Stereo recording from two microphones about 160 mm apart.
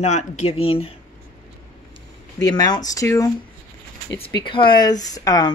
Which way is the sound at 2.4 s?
25° left (ahead or behind).